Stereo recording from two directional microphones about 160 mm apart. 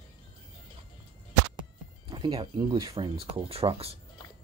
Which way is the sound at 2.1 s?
30° right (ahead or behind).